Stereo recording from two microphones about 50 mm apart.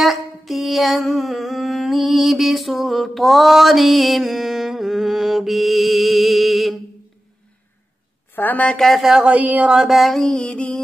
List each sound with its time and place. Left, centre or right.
0.0 s humming: centre
8.4 s speech: left
8.7 s speech: centre
9.2 s speech: right
9.8 s speech: centre
10.1 s music: centre
10.5 s music: left